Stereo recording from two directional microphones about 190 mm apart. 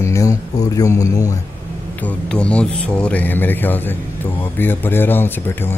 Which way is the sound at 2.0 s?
5° left (ahead or behind).